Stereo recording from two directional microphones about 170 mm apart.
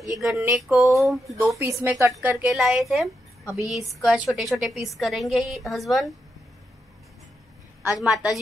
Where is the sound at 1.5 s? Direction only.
15° right (ahead or behind).